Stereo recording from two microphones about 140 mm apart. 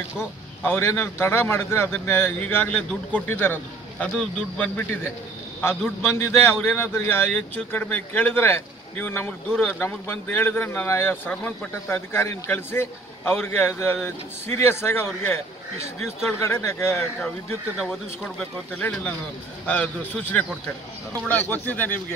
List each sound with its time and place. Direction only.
0.7 s speech: 15° left (ahead or behind)
16.3 s speech: 20° left (ahead or behind)
17.8 s speech: 10° left (ahead or behind)